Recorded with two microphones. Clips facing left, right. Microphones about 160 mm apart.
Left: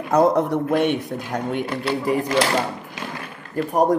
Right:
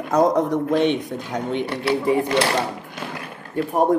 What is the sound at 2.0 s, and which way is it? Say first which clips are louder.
Speech: right 2 dB; 25° right (ahead or behind).